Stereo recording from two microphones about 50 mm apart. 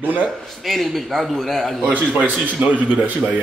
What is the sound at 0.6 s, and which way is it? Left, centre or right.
Speech, centre.